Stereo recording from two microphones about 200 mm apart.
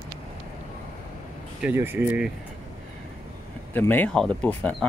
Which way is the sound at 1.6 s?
10° right (ahead or behind).